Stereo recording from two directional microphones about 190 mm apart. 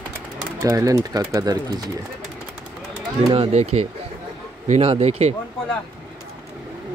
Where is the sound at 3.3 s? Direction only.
30° right (ahead or behind).